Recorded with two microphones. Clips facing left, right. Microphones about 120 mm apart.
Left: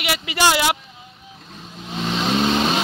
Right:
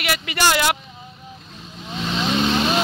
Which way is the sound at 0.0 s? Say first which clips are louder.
Left 1 dB; 20° left (ahead or behind).